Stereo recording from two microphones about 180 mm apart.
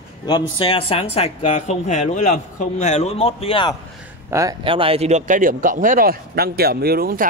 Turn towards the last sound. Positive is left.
turn(degrees=-55)  # may be behind; listen again after turning